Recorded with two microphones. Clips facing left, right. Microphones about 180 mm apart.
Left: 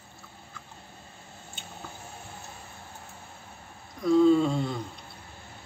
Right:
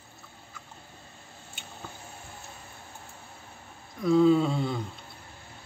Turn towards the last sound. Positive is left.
turn(degrees=-5)  # may be behind; listen again after turning